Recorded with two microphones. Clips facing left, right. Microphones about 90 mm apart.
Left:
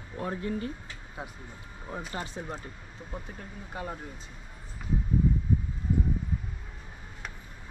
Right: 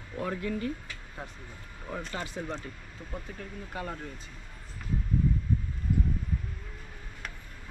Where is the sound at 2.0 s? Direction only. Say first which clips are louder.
Even; 5° left (ahead or behind).